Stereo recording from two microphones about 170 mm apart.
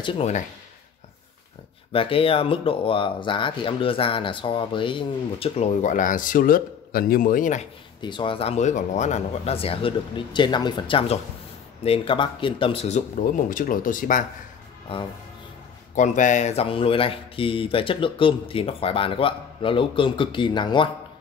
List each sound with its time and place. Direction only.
0.0 s speech: 30° left (ahead or behind)
1.9 s speech: 35° left (ahead or behind)
5.8 s speech: 50° left (ahead or behind)
8.0 s speech: 30° left (ahead or behind)
13.2 s speech: 55° left (ahead or behind)
15.9 s speech: 45° left (ahead or behind); by 20.9 s 30° left (ahead or behind)